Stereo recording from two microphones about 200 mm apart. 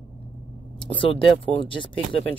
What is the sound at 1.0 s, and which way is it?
Speech, 25° left (ahead or behind).